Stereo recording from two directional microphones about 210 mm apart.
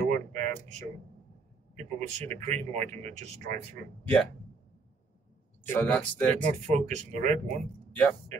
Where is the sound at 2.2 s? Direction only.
35° right (ahead or behind).